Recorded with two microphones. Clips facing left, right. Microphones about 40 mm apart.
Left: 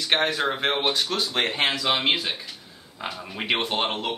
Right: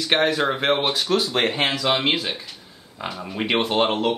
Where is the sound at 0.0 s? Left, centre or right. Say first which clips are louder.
Right 3 dB; centre.